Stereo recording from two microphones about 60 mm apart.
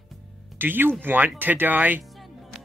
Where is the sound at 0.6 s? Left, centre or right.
Right.